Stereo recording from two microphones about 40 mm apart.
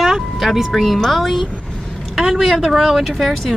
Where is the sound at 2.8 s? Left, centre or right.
Centre.